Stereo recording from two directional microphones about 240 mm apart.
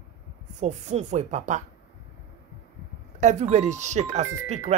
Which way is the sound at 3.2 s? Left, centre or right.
Right.